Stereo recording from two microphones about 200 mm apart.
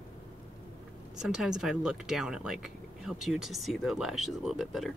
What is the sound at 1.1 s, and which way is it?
Speech, 5° right (ahead or behind).